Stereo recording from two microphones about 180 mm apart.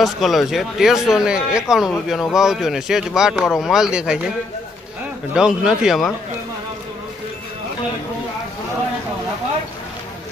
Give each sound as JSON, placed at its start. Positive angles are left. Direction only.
{"t": 0.0, "sound": "a man's voice", "side_deg": 0}
{"t": 5.3, "sound": "a man's voice", "side_deg": -5}